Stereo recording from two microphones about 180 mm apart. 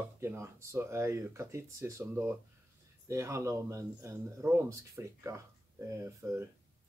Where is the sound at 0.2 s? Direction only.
15° right (ahead or behind).